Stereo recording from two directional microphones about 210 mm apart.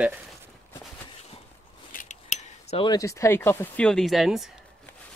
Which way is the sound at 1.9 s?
40° left (ahead or behind).